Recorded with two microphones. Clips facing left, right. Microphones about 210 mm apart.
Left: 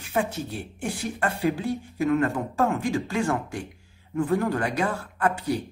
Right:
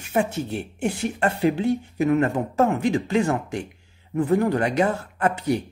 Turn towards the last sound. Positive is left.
turn(degrees=-20)  # may be behind; listen again after turning